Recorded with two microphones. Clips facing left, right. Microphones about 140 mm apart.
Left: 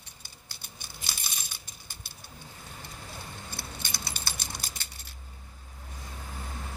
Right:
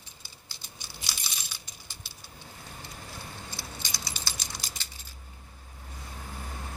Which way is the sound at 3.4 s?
55° left (ahead or behind).